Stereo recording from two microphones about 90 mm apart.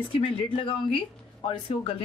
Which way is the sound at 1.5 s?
65° left (ahead or behind).